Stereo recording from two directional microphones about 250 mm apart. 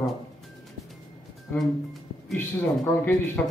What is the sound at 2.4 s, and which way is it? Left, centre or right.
A man's voice, centre.